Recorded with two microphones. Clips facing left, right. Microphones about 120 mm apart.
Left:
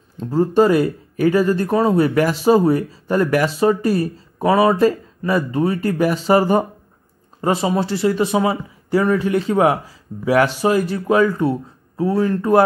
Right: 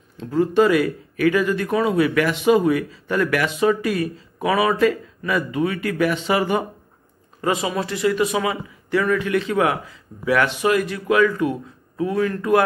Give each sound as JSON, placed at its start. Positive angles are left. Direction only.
{"t": 0.2, "sound": "speech", "side_deg": 35}
{"t": 7.6, "sound": "speech", "side_deg": 30}